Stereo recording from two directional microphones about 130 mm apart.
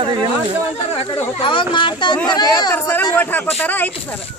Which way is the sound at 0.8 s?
50° left (ahead or behind).